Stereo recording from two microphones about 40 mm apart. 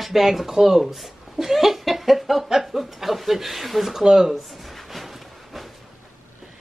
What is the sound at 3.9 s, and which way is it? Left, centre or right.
Speech, centre.